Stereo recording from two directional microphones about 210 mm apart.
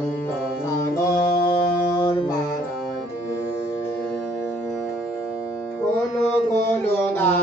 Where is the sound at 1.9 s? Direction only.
20° left (ahead or behind).